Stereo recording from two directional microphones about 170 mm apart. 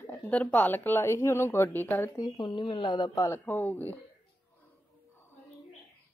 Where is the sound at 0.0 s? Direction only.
10° left (ahead or behind).